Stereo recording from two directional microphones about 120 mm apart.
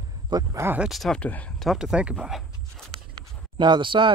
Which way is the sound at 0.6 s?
15° right (ahead or behind).